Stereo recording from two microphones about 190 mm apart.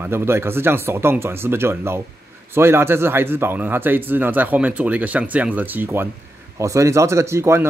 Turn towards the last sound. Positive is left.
turn(degrees=-15)  # may be behind; listen again after turning